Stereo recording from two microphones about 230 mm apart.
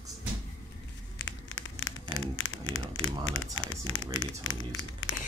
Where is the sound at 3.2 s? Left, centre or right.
Left.